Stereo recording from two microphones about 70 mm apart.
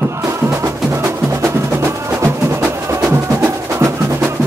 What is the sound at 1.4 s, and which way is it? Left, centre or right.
Music, right.